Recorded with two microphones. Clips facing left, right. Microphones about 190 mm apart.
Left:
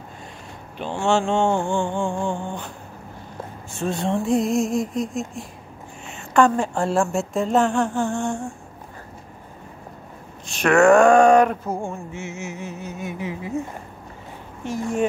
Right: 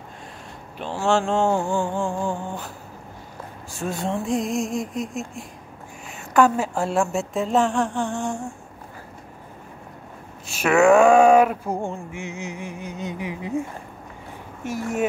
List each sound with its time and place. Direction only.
0.7 s a woman's voice: centre (ahead or behind)
3.8 s a woman's voice: centre (ahead or behind)
10.4 s a woman's voice: 5° right (ahead or behind)
11.7 s music: 15° right (ahead or behind)